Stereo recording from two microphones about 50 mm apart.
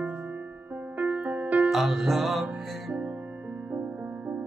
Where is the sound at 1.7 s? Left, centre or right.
Centre.